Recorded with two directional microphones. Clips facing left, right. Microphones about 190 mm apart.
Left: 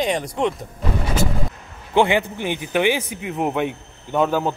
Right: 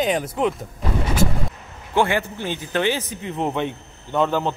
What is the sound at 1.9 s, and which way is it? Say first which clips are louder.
A man's voice: left 3 dB; 15° left (ahead or behind).